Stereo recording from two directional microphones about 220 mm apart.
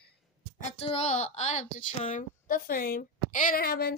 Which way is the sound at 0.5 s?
30° left (ahead or behind).